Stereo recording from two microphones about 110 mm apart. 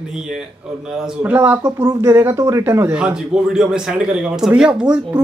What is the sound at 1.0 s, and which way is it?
Speech, 15° right (ahead or behind).